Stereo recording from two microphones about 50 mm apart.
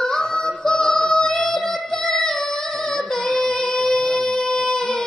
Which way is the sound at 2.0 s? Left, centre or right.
Centre.